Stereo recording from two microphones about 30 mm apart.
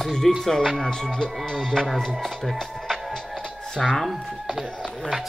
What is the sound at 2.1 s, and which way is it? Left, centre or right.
Speech, centre.